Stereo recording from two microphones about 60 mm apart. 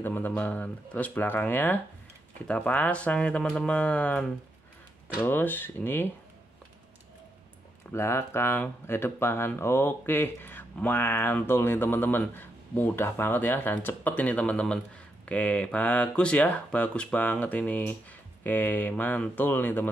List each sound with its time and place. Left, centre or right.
0.0 s speech: left
2.4 s speech: centre
5.2 s speech: left
7.9 s speech: left